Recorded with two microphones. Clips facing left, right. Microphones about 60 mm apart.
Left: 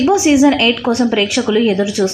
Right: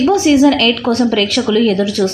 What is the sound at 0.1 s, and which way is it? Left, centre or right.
Speech, centre.